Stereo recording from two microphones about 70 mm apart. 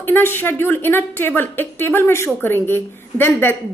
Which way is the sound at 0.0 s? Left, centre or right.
Left.